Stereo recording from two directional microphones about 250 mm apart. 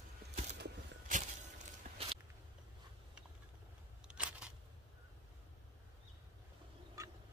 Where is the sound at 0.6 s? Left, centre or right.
Right.